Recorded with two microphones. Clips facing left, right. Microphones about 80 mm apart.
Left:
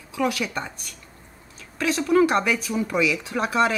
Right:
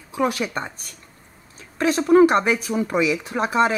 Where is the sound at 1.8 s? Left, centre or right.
Right.